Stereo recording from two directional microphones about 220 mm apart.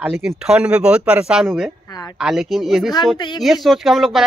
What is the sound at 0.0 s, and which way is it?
Speech, 5° right (ahead or behind).